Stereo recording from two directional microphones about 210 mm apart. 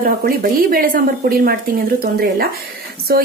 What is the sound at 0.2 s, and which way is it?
Speech, 45° right (ahead or behind).